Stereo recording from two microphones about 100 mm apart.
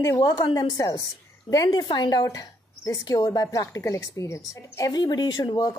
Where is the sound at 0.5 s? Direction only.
40° left (ahead or behind).